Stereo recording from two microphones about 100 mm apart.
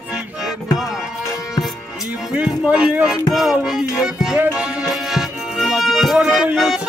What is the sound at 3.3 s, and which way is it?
Music, 5° right (ahead or behind).